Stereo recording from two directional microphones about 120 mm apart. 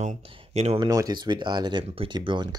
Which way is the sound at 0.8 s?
30° right (ahead or behind).